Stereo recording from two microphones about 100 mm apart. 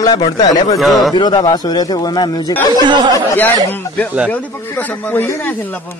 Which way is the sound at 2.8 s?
45° right (ahead or behind).